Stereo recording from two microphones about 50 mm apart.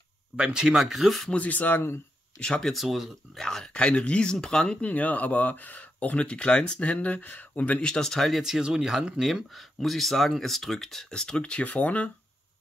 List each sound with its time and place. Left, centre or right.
0.4 s speech: centre
1.3 s speech: left
2.3 s speech: centre
2.7 s speech: centre
3.3 s speech: centre
3.7 s speech: left
4.8 s speech: left
7.8 s speech: centre
8.4 s speech: centre
11.6 s speech: left